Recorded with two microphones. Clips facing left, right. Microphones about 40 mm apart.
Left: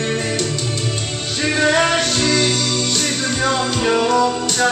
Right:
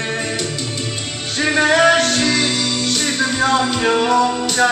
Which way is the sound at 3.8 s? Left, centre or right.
Right.